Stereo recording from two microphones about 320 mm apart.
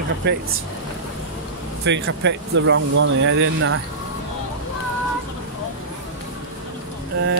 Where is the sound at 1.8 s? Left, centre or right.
Right.